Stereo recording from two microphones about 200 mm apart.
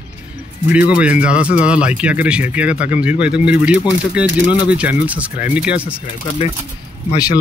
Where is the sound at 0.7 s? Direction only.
5° right (ahead or behind).